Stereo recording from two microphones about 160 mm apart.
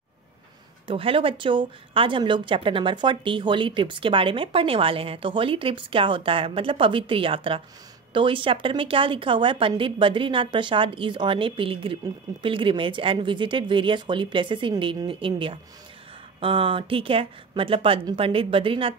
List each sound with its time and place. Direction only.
0.8 s a woman's voice: 35° right (ahead or behind)